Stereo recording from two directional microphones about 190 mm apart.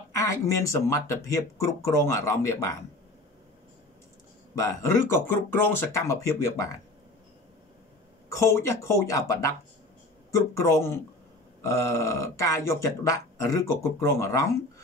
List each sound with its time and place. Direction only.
0.1 s speech: 15° left (ahead or behind)
4.6 s speech: 15° left (ahead or behind)
8.3 s speech: 15° left (ahead or behind)